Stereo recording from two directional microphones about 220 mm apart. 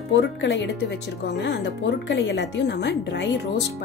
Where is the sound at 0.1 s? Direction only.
55° left (ahead or behind).